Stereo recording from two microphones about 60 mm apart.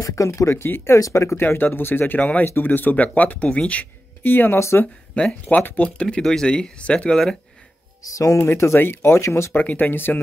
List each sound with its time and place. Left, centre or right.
0.0 s speech: left
0.5 s speech: left
0.9 s speech: left
1.4 s speech: left
4.2 s speech: left
4.6 s speech: left
5.1 s speech: centre
6.0 s speech: centre
8.1 s speech: left
8.4 s speech: left
9.5 s speech: left